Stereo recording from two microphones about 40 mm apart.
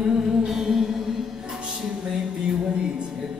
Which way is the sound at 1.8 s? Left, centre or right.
Centre.